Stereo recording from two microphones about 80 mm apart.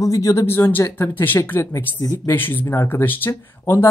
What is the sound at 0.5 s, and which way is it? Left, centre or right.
Speech, left.